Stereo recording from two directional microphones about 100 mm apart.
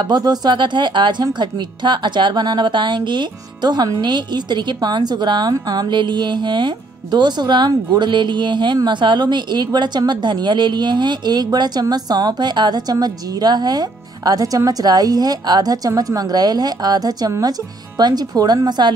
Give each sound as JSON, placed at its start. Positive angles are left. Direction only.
{"t": 0.0, "sound": "a woman's voice", "side_deg": -45}